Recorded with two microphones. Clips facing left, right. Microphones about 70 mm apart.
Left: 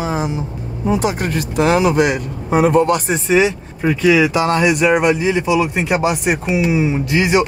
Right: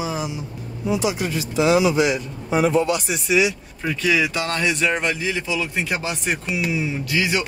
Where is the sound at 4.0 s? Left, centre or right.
Centre.